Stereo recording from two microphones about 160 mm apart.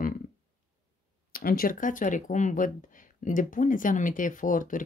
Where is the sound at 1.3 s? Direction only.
65° left (ahead or behind).